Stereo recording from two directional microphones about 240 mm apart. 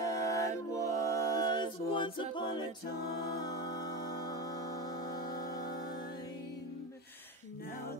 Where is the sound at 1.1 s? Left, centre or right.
Centre.